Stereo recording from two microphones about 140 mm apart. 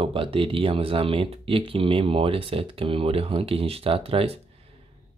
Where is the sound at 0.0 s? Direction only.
40° right (ahead or behind).